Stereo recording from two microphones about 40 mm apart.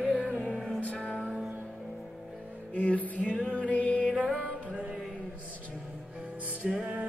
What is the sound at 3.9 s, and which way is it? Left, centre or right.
Music, right.